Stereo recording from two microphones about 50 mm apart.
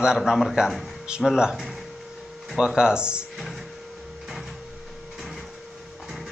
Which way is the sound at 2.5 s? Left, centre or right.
Centre.